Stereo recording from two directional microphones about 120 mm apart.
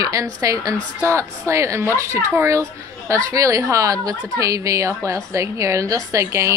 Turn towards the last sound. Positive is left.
turn(degrees=-25)  # may be behind; listen again after turning